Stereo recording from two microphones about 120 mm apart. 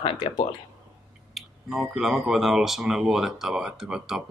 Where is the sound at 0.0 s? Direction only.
40° left (ahead or behind).